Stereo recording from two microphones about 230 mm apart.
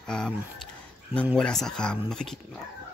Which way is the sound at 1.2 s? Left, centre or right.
Centre.